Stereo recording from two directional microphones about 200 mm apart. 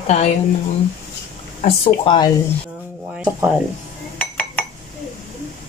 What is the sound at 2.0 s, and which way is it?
Speech, 20° left (ahead or behind).